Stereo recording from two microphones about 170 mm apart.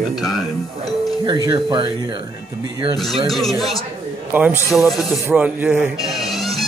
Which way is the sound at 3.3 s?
Centre (ahead or behind).